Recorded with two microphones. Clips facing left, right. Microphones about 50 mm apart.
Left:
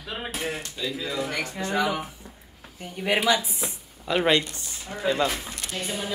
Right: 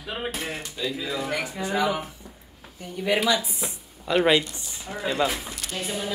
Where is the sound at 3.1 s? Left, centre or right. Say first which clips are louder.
Even; left.